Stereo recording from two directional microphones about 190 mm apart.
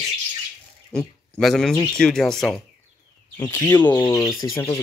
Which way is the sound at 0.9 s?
5° left (ahead or behind).